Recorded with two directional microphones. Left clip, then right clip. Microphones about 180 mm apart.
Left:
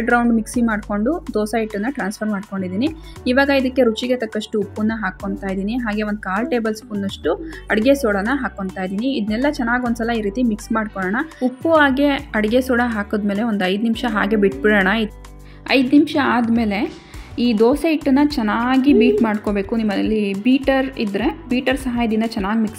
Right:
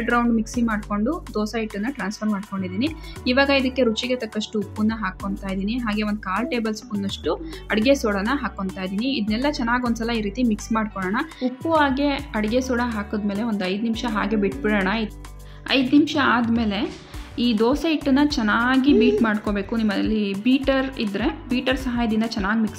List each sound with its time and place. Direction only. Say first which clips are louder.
0.0 s a woman's voice: left 4 dB; 20° left (ahead or behind)
11.7 s a woman's voice: left 5 dB; 25° left (ahead or behind)